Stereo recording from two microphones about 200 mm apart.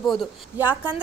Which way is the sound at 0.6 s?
10° right (ahead or behind).